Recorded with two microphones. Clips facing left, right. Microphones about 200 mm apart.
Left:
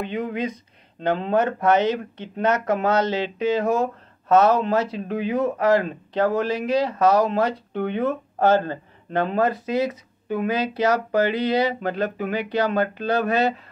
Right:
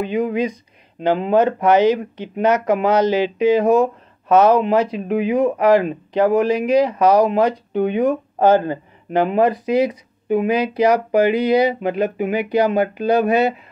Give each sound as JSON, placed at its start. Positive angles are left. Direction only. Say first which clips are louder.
{"t": 0.0, "sound": "speech", "louder": "right 6 dB", "side_deg": -15}